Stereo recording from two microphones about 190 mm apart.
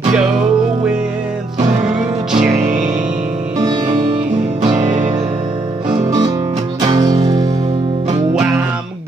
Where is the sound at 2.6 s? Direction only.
40° right (ahead or behind).